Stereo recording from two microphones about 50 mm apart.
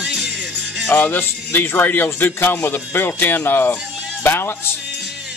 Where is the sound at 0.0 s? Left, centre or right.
Centre.